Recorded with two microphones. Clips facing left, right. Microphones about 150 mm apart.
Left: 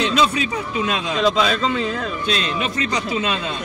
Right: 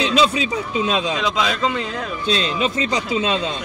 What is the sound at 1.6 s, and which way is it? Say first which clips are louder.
Speech: left 1 dB; 5° right (ahead or behind).